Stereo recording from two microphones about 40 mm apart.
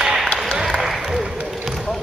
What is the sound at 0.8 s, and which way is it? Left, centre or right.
Applause, centre.